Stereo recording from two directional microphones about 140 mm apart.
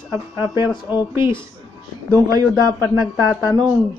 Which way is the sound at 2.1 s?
30° right (ahead or behind).